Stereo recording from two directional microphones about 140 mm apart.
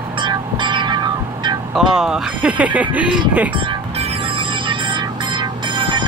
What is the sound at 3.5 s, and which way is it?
Music, 40° right (ahead or behind).